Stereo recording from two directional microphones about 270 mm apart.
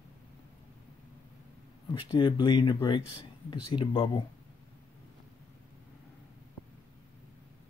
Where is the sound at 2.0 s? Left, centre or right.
Centre.